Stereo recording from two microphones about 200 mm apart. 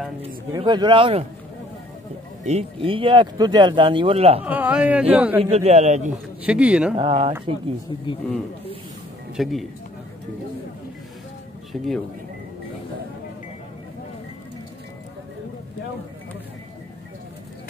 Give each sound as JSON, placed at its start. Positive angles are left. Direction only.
{"t": 0.5, "sound": "speech", "side_deg": -20}
{"t": 2.4, "sound": "speech", "side_deg": -30}
{"t": 4.5, "sound": "speech", "side_deg": -5}
{"t": 5.4, "sound": "a man's voice", "side_deg": -30}
{"t": 6.4, "sound": "speech", "side_deg": -5}
{"t": 7.0, "sound": "speech", "side_deg": -25}
{"t": 9.4, "sound": "speech", "side_deg": 0}
{"t": 11.7, "sound": "speech", "side_deg": 0}